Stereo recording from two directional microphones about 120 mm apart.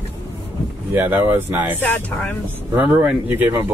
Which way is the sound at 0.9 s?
15° right (ahead or behind).